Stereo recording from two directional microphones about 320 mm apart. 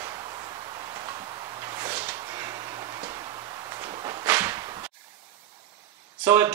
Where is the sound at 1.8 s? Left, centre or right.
Centre.